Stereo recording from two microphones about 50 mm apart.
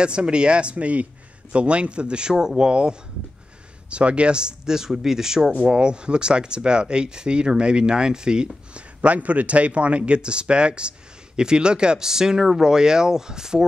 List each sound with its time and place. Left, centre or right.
0.0 s speech: centre